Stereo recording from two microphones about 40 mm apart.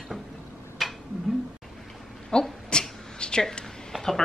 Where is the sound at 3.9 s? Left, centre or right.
Centre.